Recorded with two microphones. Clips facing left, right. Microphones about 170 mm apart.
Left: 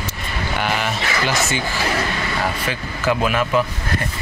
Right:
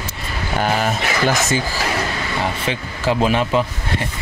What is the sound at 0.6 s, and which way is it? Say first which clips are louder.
Speech: right 4 dB; 40° right (ahead or behind).